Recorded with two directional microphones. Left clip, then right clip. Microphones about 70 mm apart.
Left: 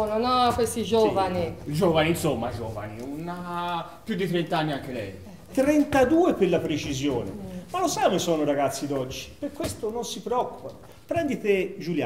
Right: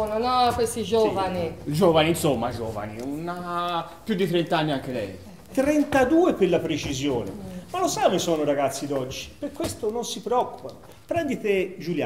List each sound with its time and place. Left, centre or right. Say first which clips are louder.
0.0 s speech: right 1 dB; centre
1.7 s speech: right 3 dB; right
5.5 s a man's voice: even; centre